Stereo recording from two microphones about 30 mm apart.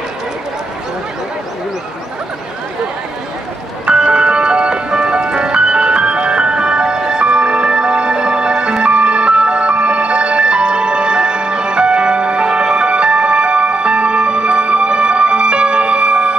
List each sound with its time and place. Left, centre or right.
3.9 s music: right